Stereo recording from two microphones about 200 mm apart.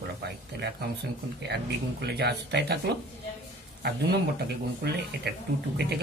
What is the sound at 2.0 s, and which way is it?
Speech, 55° right (ahead or behind).